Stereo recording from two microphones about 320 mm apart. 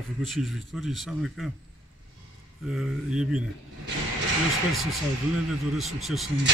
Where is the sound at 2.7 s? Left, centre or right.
Centre.